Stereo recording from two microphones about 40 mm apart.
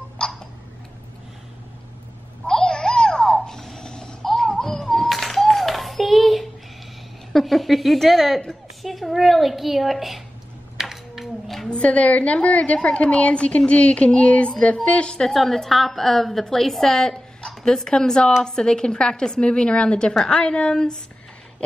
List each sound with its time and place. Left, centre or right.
0.2 s tick-tock: centre
2.4 s a sound: centre
3.4 s mechanisms: centre
4.2 s music: centre
7.3 s a woman's voice: centre
10.8 s a sound: centre
11.4 s a sound: centre
11.8 s a woman's voice: left
15.1 s a woman's voice: centre